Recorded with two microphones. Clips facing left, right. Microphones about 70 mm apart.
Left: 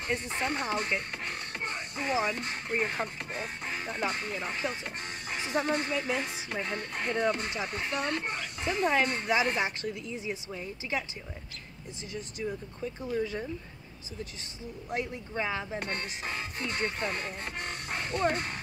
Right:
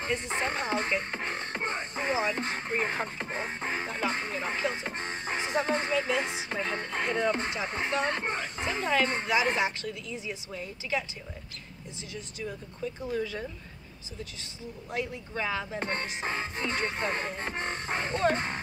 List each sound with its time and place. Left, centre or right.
0.3 s speech: right
6.5 s music: right
7.6 s speech: right
10.5 s speech: centre
12.8 s speech: left
15.0 s speech: centre
15.8 s speech: right